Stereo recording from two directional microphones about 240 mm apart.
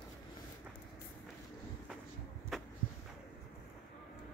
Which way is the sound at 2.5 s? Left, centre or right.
Centre.